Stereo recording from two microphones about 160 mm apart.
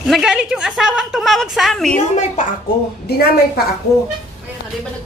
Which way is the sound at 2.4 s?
50° left (ahead or behind).